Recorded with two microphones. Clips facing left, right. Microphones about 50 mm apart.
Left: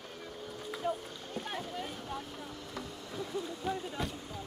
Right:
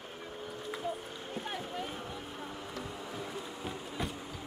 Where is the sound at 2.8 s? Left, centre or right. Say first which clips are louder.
Left 1 dB; centre.